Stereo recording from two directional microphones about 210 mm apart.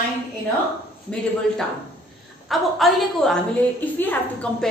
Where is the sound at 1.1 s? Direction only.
5° left (ahead or behind).